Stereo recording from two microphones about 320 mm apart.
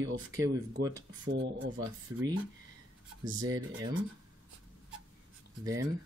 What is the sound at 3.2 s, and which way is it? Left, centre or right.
Speech, centre.